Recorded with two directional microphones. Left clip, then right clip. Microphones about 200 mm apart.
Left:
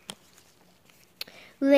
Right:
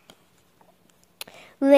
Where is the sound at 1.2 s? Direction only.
5° right (ahead or behind).